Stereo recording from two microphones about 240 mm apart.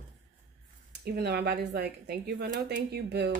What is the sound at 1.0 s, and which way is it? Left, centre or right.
A woman's voice, right.